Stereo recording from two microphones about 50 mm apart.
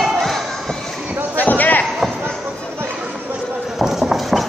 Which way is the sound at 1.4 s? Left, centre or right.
Left.